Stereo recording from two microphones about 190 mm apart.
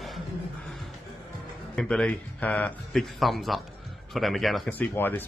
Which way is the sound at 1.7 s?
5° left (ahead or behind).